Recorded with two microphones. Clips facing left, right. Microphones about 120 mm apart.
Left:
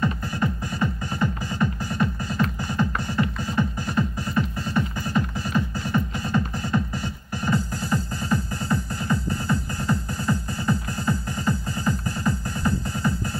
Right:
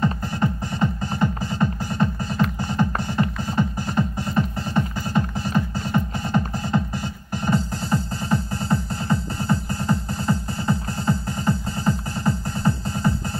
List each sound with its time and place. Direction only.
0.0 s music: 25° right (ahead or behind)